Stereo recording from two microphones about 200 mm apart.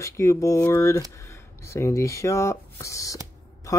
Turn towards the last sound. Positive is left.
turn(degrees=15)  # may be behind; listen again after turning